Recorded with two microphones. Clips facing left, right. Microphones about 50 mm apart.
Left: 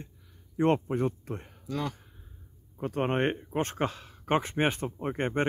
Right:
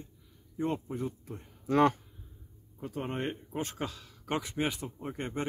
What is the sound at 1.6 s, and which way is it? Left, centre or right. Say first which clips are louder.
Speech: right 9 dB; right.